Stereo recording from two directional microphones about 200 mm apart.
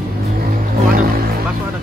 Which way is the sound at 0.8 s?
45° right (ahead or behind).